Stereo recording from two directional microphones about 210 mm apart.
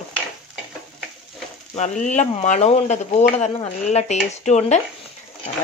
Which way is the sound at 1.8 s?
35° left (ahead or behind).